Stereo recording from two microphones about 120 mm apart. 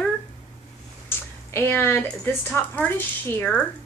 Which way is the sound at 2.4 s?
15° left (ahead or behind).